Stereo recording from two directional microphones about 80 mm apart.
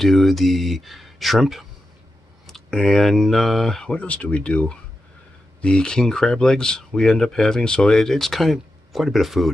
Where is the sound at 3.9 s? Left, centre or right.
Centre.